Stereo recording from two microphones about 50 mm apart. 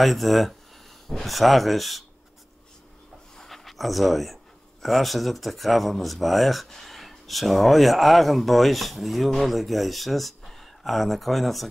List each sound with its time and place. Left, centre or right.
0.0 s speech: centre
3.3 s a sound: centre
4.8 s speech: centre